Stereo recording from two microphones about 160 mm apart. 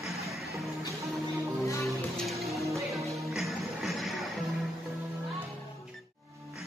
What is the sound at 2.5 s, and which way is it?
Music, 20° right (ahead or behind).